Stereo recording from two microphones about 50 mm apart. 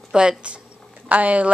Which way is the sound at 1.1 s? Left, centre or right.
Right.